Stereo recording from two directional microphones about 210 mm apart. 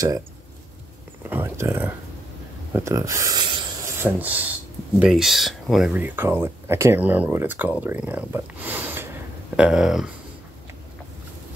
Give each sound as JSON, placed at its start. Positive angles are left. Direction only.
{"t": 1.2, "sound": "speech", "side_deg": -10}
{"t": 4.0, "sound": "speech", "side_deg": -10}